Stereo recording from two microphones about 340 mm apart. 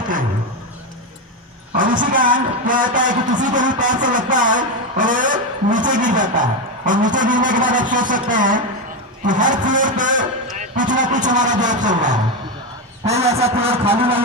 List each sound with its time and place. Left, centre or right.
1.8 s a man's voice: right